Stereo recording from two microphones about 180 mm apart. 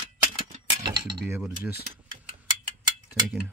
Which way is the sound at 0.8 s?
20° right (ahead or behind).